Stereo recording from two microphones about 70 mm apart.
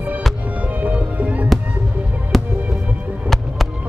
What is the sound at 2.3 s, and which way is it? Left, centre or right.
Music, centre.